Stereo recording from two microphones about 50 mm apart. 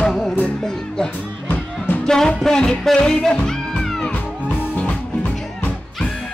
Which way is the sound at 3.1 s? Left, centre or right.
Centre.